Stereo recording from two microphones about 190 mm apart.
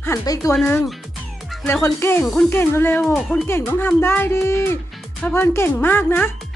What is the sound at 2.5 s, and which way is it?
Speech, 10° left (ahead or behind).